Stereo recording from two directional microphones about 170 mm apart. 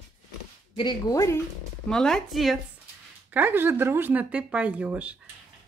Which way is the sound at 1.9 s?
5° left (ahead or behind).